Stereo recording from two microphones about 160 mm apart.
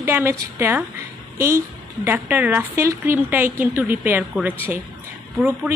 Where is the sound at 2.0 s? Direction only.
10° right (ahead or behind).